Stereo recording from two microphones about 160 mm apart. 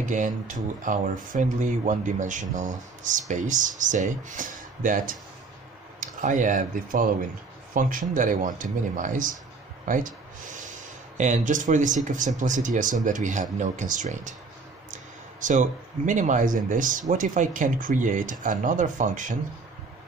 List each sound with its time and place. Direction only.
0.1 s speech: 55° right (ahead or behind)
15.4 s speech: 55° right (ahead or behind)